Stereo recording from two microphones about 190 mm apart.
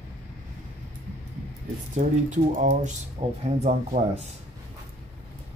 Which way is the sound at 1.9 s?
40° right (ahead or behind).